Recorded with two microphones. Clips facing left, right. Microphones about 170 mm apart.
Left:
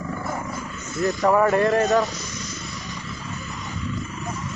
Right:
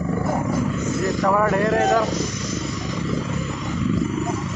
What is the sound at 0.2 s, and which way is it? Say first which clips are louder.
Wild animals: right 8 dB; 70° right (ahead or behind).